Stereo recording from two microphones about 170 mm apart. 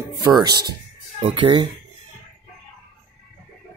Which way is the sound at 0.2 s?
25° right (ahead or behind).